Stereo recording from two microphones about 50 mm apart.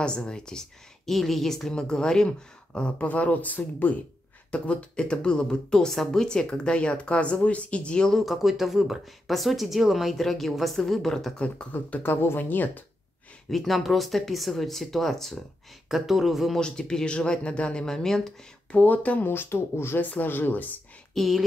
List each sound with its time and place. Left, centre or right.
0.0 s speech: centre
1.1 s a woman's voice: centre; by 3.9 s left
4.5 s speech: left
8.3 s a woman's voice: centre
11.3 s speech: centre
12.0 s speech: left
13.5 s speech: centre
16.5 s a woman's voice: centre
18.7 s speech: left
19.2 s speech: left
20.0 s speech: left
21.1 s speech: centre